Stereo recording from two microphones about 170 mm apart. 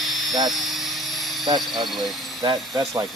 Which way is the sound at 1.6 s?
Centre (ahead or behind).